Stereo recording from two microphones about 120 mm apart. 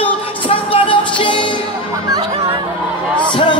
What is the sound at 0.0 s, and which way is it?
Music, 50° left (ahead or behind).